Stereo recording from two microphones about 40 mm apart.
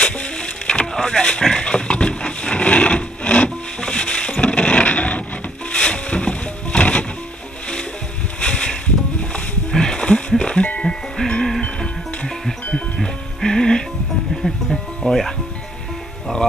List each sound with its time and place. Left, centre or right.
0.0 s a sound: left
5.7 s music: left
8.4 s music: left
11.6 s music: left
13.0 s music: centre
15.0 s music: centre